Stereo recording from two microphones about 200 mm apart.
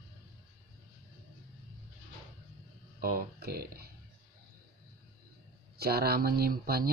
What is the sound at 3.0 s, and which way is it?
Speech, 50° right (ahead or behind).